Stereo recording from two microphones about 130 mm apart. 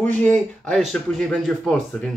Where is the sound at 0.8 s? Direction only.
Centre (ahead or behind).